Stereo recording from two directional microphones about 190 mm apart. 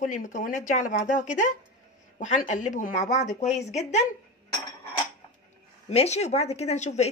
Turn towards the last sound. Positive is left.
turn(degrees=35)  # may be behind; listen again after turning